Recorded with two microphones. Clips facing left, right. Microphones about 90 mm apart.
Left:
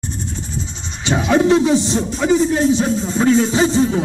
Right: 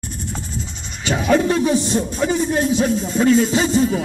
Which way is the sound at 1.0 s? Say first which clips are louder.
Left 2 dB; 25° left (ahead or behind).